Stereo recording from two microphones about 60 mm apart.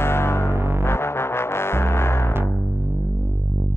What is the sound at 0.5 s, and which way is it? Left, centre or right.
Music, right.